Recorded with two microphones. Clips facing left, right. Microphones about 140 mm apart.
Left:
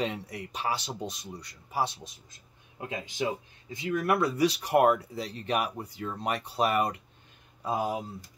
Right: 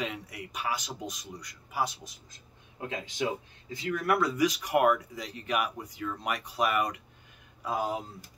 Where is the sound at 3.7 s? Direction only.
20° left (ahead or behind).